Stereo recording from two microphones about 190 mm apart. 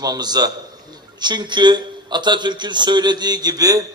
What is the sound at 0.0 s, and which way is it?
A man's voice, 20° right (ahead or behind).